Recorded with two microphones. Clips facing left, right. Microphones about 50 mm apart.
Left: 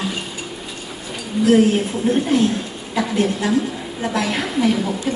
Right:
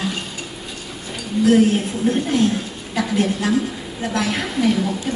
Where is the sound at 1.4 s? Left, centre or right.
Centre.